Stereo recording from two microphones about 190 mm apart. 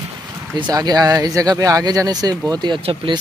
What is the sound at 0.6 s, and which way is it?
Speech, 20° right (ahead or behind).